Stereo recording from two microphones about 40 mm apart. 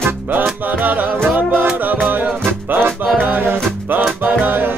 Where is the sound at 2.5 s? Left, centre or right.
Right.